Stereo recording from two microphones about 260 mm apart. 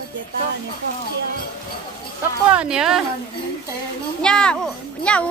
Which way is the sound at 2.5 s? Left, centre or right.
Centre.